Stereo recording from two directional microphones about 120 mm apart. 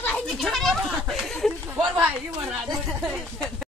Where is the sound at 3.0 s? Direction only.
5° right (ahead or behind).